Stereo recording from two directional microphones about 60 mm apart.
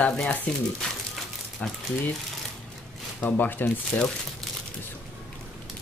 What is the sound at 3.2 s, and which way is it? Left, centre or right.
Speech, left.